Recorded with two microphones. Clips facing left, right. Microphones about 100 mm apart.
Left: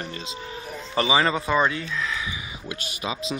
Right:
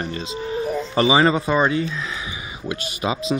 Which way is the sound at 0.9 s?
20° right (ahead or behind).